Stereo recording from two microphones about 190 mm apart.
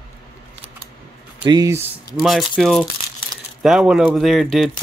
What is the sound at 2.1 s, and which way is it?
Speech, centre (ahead or behind).